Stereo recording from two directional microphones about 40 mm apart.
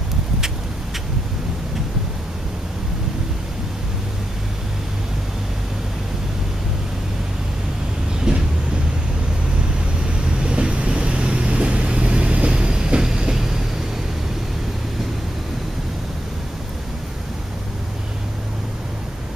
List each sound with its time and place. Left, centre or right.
8.3 s train: centre
10.0 s vehicle: right